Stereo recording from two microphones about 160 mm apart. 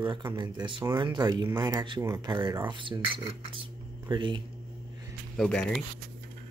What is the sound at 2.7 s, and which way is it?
Speech, 30° right (ahead or behind).